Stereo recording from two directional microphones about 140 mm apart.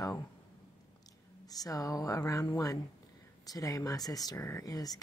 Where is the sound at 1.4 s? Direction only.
25° left (ahead or behind).